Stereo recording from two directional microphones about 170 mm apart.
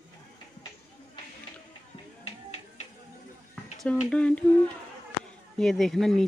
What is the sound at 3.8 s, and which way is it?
Speech, 5° left (ahead or behind).